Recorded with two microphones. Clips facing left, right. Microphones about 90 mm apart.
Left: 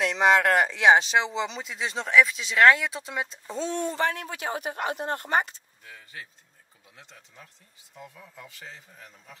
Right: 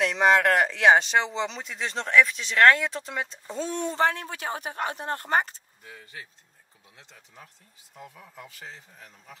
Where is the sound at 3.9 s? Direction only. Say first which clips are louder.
Right 3 dB; 35° right (ahead or behind).